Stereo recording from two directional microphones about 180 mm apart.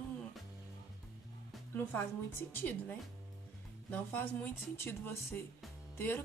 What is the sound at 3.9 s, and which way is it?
A woman's voice, 10° left (ahead or behind).